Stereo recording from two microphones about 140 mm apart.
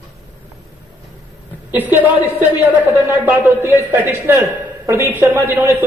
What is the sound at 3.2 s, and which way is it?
A man's voice, 15° right (ahead or behind).